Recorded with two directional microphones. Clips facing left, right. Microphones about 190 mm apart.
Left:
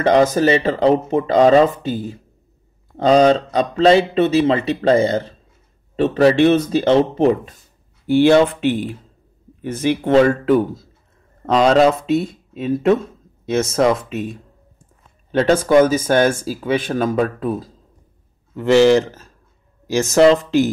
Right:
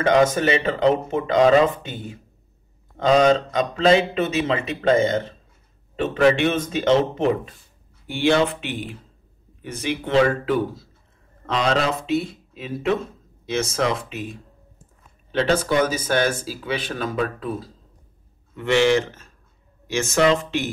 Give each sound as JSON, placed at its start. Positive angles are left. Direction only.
{"t": 0.0, "sound": "speech", "side_deg": 35}
{"t": 11.5, "sound": "speech", "side_deg": 40}
{"t": 15.3, "sound": "speech", "side_deg": 50}